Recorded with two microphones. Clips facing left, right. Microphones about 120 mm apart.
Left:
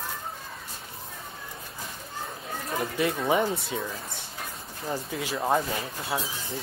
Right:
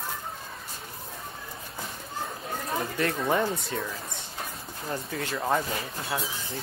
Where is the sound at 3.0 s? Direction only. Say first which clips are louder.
Left 2 dB; 5° left (ahead or behind).